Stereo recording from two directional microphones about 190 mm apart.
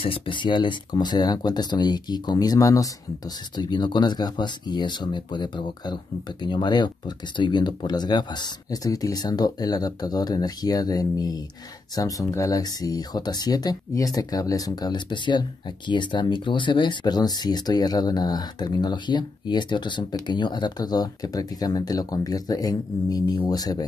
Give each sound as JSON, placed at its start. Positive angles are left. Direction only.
{"t": 0.0, "sound": "speech", "side_deg": 25}